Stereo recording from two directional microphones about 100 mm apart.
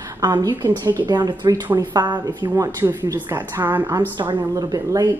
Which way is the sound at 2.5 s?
30° right (ahead or behind).